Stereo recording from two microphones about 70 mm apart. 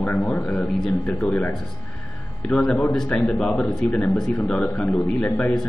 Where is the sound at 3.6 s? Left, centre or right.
Left.